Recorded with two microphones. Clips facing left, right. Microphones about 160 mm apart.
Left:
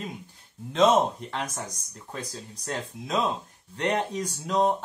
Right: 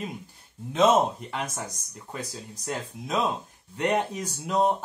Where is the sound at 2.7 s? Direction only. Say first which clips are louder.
Even; 5° right (ahead or behind).